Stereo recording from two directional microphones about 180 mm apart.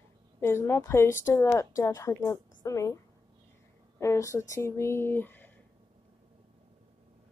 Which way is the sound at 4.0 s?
15° left (ahead or behind).